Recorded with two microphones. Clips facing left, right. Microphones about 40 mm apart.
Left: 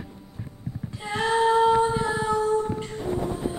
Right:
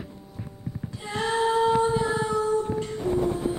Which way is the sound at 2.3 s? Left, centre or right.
Left.